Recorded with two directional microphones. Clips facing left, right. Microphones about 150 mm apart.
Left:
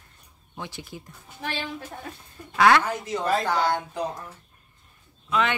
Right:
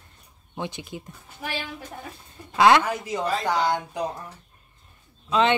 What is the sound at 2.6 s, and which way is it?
A woman's voice, 20° right (ahead or behind).